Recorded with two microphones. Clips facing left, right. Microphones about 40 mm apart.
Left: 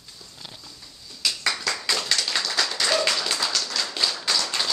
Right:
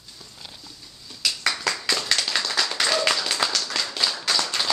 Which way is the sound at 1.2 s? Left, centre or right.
Centre.